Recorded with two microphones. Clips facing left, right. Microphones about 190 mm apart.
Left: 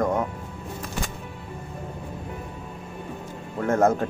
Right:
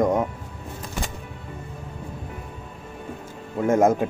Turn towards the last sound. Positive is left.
turn(degrees=-10)  # may be behind; listen again after turning